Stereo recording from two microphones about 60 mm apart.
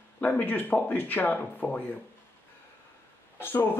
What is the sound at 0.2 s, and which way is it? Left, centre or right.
Speech, left.